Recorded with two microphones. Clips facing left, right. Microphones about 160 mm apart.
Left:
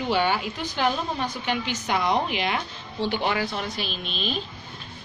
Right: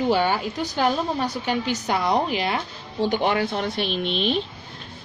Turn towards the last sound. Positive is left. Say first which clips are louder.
# right 7 dB
turn(degrees=-70)  # may be behind; listen again after turning